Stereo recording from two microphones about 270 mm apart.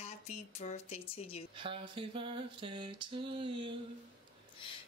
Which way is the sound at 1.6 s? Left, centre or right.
Centre.